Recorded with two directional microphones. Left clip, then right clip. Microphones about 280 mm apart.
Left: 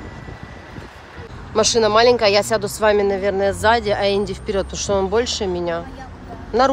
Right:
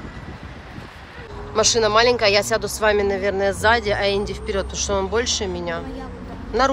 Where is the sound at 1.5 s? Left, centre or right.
Centre.